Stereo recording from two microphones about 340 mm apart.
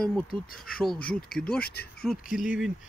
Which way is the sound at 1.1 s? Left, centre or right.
Left.